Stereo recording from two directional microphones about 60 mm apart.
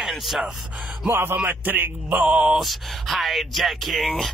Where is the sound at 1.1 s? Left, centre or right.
Right.